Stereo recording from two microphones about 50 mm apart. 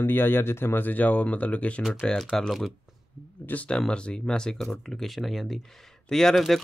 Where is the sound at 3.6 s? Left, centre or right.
Centre.